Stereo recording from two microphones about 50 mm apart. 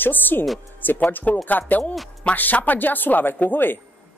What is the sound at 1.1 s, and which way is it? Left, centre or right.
Speech, left.